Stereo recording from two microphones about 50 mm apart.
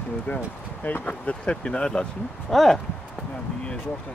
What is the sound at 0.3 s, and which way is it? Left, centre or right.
Speech, left.